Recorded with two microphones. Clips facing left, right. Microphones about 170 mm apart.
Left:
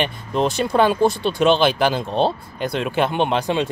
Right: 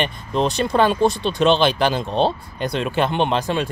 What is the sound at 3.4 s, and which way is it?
Speech, 15° left (ahead or behind).